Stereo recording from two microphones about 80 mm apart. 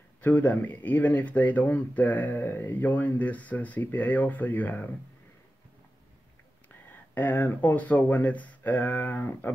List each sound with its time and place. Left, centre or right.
0.2 s speech: centre
6.9 s speech: left